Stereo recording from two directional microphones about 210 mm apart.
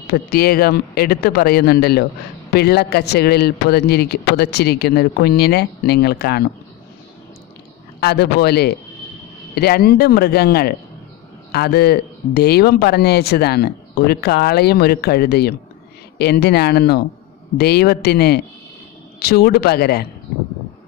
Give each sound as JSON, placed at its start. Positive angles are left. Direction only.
{"t": 0.0, "sound": "speech", "side_deg": 45}
{"t": 8.0, "sound": "speech", "side_deg": 50}